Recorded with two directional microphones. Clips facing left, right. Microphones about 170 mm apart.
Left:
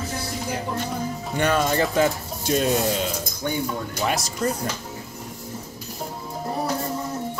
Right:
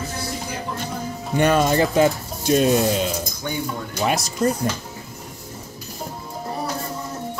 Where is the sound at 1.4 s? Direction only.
15° right (ahead or behind).